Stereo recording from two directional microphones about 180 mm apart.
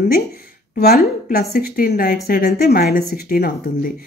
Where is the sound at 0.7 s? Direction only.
55° left (ahead or behind).